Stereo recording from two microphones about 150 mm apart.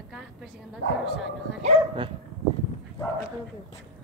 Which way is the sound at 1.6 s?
40° right (ahead or behind).